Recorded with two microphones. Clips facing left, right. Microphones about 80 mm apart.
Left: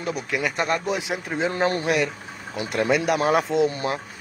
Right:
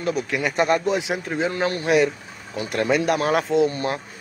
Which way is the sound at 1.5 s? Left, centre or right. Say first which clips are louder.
Left 1 dB; left.